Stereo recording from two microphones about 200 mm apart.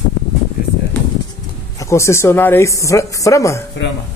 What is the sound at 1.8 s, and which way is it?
A woman's voice, 15° left (ahead or behind).